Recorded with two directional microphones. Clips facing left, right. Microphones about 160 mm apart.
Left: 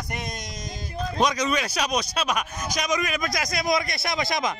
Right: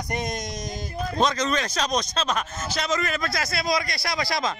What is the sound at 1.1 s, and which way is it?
A man's voice, 10° left (ahead or behind).